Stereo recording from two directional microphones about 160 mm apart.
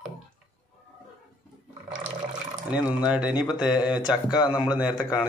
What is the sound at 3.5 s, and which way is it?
Speech, 25° left (ahead or behind).